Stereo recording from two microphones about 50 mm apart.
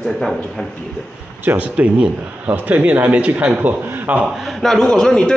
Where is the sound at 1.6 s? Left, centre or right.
Right.